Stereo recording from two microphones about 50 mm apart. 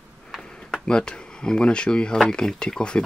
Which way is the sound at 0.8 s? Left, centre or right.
Centre.